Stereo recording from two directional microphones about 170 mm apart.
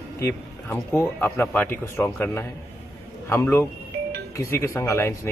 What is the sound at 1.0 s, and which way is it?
Speech, 10° left (ahead or behind).